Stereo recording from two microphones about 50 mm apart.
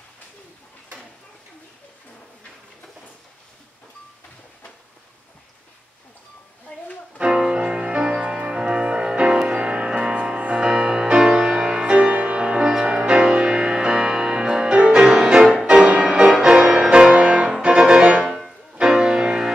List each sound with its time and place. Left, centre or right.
7.2 s music: centre